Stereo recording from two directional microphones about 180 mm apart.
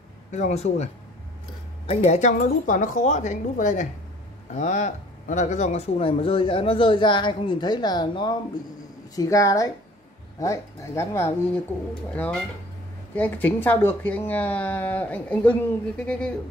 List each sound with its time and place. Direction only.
0.3 s speech: 40° left (ahead or behind)
1.9 s a woman's voice: 40° left (ahead or behind); by 16.3 s 5° left (ahead or behind)